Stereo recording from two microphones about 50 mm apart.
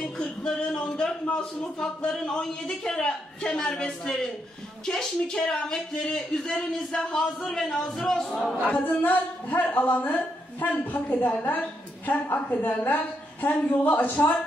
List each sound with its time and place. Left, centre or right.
0.7 s a man's voice: centre
8.6 s a woman's voice: left